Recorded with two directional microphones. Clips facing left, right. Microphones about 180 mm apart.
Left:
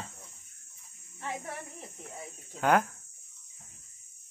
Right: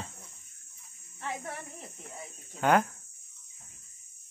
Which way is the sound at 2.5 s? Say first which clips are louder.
Right 1 dB; centre (ahead or behind).